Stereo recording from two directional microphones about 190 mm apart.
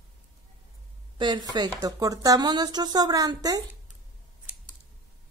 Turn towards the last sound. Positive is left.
turn(degrees=-20)  # may be behind; listen again after turning